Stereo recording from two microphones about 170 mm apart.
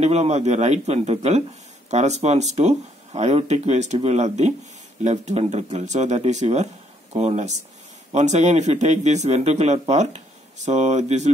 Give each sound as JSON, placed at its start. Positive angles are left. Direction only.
{"t": 0.0, "sound": "speech", "side_deg": -40}